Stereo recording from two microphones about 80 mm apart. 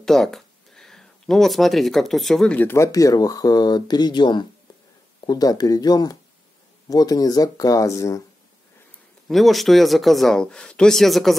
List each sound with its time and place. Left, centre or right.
0.0 s speech: centre
2.9 s speech: left
5.2 s speech: left
9.3 s speech: centre